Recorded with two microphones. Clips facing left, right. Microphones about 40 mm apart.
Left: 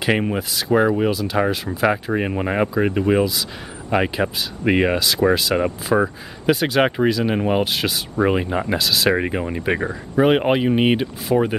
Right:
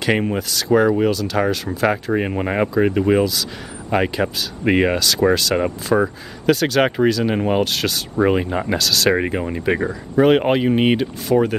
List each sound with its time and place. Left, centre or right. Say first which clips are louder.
0.1 s speech: right 1 dB; centre
9.1 s speech: right 1 dB; centre